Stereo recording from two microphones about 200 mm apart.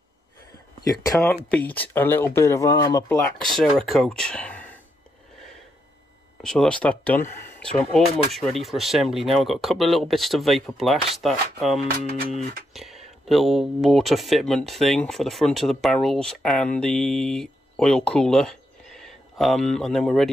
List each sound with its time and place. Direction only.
0.8 s speech: 20° left (ahead or behind)
1.2 s speech: 5° left (ahead or behind)
3.3 s speech: centre (ahead or behind)
6.4 s speech: centre (ahead or behind)